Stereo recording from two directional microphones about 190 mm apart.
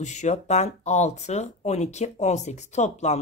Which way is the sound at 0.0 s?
40° left (ahead or behind).